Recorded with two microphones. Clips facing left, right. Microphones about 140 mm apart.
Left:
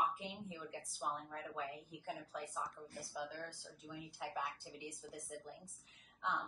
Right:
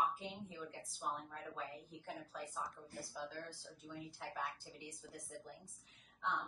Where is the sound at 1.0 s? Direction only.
Centre (ahead or behind).